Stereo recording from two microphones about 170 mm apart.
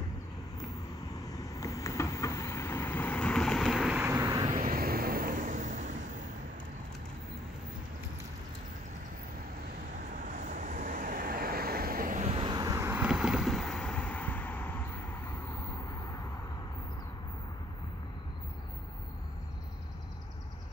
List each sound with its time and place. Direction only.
1.4 s vehicle: 20° left (ahead or behind); by 4.0 s centre (ahead or behind)
4.0 s vehicle: 15° right (ahead or behind)
4.6 s vehicle: 60° right (ahead or behind)
10.1 s vehicle: 45° right (ahead or behind)
12.3 s vehicle: 30° right (ahead or behind); by 14.8 s 10° left (ahead or behind)